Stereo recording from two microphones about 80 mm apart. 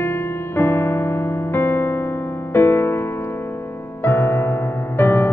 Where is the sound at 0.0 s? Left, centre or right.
Left.